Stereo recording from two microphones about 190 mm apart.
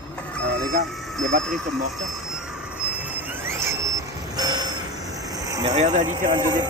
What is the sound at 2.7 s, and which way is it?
Vehicle, 10° right (ahead or behind).